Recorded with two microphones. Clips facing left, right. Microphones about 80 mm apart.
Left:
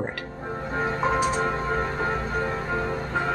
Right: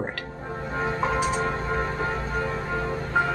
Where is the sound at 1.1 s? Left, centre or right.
Left.